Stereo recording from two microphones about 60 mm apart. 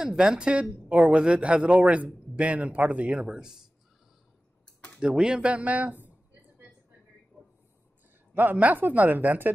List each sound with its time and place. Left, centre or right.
0.0 s a woman's voice: centre
3.3 s speech: centre
5.0 s a woman's voice: centre
8.4 s a woman's voice: right